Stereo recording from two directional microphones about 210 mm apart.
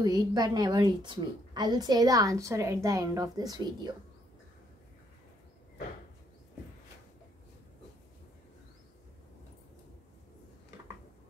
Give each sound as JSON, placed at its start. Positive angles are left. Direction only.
{"t": 0.0, "sound": "a woman's voice", "side_deg": -20}